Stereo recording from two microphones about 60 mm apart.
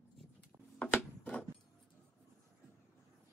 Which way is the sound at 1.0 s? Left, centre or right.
Left.